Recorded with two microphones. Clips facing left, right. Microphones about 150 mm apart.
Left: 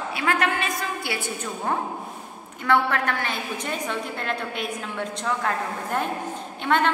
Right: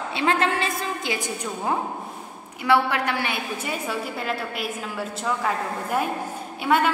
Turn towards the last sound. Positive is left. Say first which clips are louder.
# right 1 dB
turn(degrees=-5)  # may be behind; listen again after turning